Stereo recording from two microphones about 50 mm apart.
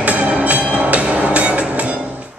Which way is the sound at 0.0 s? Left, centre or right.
Right.